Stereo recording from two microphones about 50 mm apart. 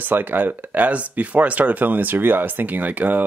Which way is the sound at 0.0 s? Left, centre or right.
Right.